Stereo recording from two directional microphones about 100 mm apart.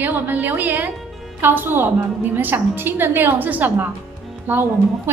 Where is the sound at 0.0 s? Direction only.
20° right (ahead or behind).